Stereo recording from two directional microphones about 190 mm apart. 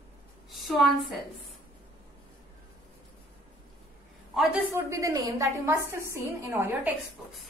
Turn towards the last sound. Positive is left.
turn(degrees=-10)  # may be behind; listen again after turning